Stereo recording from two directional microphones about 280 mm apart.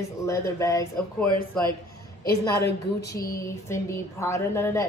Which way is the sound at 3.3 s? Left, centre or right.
Centre.